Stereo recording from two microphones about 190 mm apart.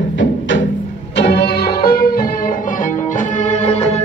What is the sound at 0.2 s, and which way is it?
Music, 80° left.